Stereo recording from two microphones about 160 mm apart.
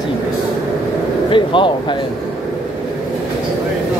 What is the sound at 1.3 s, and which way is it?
Speech, 30° left (ahead or behind).